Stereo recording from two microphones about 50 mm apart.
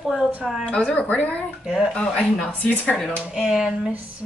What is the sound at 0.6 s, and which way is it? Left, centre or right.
Speech, left.